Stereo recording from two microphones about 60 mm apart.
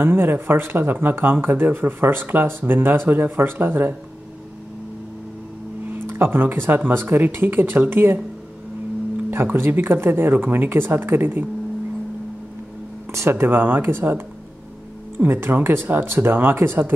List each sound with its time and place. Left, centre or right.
0.0 s speech: right
5.9 s speech: right
9.3 s speech: right
13.3 s speech: right